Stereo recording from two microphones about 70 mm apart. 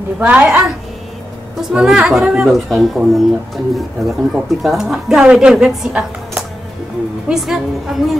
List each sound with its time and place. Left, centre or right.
0.2 s speech: centre
1.6 s a woman's voice: centre